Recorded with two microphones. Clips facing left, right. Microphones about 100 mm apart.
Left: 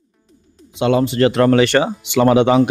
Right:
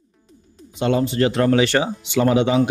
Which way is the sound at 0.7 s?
90° left.